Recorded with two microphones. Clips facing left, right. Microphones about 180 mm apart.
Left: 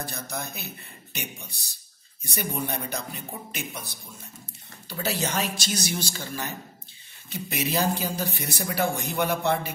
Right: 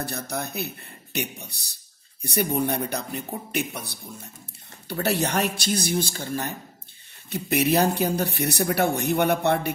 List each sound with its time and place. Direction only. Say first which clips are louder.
0.0 s speech: right 4 dB; 60° right (ahead or behind)
5.8 s speech: right 5 dB; 55° right (ahead or behind)